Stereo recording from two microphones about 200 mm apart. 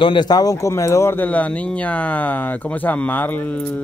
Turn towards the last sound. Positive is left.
turn(degrees=5)  # may be behind; listen again after turning